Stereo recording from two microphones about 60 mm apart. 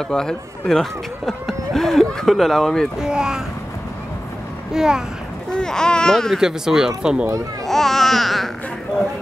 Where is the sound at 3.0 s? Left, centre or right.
Centre.